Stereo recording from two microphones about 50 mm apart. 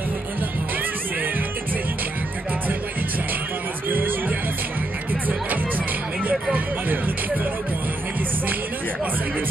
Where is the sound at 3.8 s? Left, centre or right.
Right.